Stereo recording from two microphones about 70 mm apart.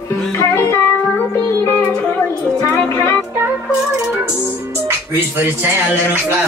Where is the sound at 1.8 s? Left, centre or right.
Centre.